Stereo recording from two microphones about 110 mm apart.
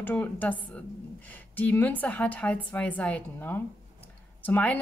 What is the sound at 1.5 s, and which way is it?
A woman's voice, 15° left (ahead or behind).